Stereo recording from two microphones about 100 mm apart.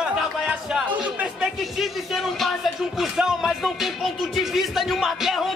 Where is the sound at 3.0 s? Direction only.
5° right (ahead or behind).